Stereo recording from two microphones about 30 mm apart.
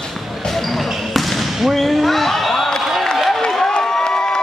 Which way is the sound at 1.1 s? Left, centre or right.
Centre.